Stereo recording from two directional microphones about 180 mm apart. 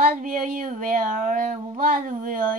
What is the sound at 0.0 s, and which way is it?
Child singing, 45° right (ahead or behind).